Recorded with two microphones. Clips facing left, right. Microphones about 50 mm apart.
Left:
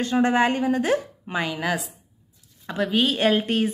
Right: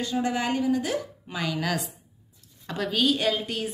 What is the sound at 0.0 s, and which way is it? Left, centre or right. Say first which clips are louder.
A woman's voice: left 7 dB; left.